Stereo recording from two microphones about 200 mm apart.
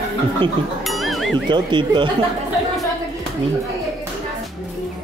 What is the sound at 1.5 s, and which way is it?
Speech, 25° right (ahead or behind).